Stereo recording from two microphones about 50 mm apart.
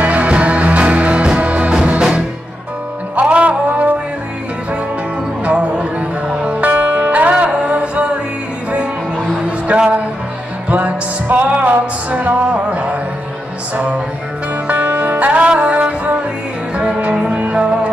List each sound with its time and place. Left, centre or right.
0.0 s music: right
3.2 s music: right
5.4 s music: right
14.9 s music: right
15.1 s music: right